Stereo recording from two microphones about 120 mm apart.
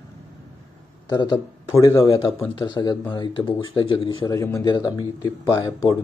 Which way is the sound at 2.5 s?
35° left (ahead or behind).